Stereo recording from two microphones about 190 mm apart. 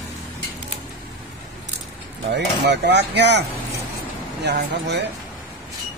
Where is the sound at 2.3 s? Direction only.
65° right (ahead or behind).